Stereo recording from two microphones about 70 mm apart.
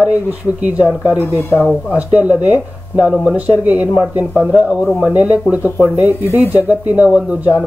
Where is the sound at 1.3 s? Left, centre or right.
Left.